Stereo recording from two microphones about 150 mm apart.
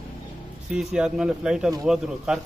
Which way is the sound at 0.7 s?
5° right (ahead or behind).